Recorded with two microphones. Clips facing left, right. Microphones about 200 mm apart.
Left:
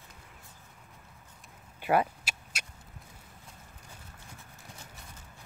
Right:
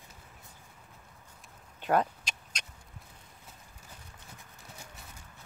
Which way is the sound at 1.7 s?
10° left (ahead or behind).